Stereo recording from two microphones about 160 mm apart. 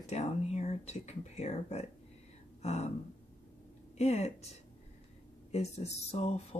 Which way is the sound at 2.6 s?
45° left (ahead or behind).